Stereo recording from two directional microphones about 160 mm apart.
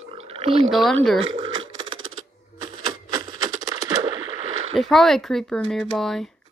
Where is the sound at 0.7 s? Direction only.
Centre (ahead or behind).